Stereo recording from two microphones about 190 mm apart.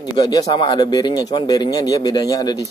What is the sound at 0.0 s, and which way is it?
Speech, 20° left (ahead or behind).